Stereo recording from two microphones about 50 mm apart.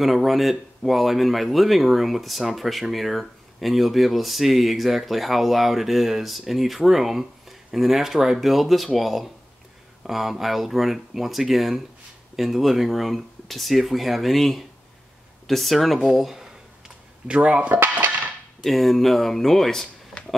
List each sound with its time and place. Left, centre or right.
0.0 s speech: centre
15.4 s a sound: centre
17.3 s speech: right
17.7 s cutlery: right
18.6 s speech: centre